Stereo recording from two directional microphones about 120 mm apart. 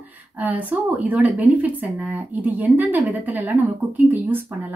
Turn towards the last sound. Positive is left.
turn(degrees=-15)  # may be behind; listen again after turning